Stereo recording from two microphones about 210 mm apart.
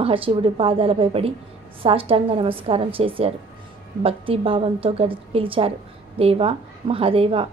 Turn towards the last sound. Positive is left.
turn(degrees=-25)  # may be behind; listen again after turning